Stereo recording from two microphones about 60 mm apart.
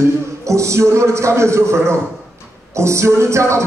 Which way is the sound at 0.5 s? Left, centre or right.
Right.